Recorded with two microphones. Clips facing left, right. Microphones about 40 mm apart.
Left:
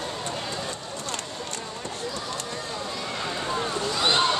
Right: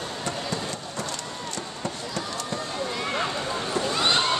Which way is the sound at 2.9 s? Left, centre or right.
Right.